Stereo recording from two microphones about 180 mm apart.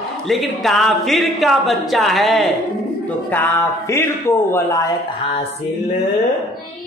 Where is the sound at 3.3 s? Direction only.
10° left (ahead or behind).